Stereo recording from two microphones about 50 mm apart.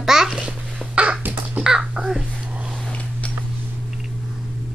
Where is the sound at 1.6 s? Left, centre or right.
Centre.